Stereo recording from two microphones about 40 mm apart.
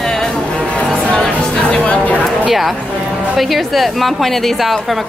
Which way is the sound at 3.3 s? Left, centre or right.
Centre.